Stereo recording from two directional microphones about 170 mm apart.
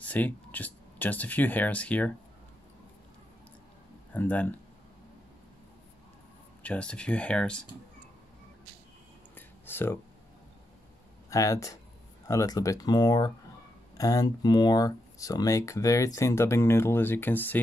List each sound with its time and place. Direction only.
0.0 s speech: 10° left (ahead or behind)
4.1 s speech: 10° left (ahead or behind)
6.6 s speech: 5° left (ahead or behind)
9.7 s speech: 15° left (ahead or behind)
11.2 s speech: 20° left (ahead or behind)